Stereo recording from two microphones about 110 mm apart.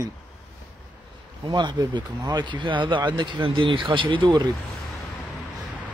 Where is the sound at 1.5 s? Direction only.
40° right (ahead or behind).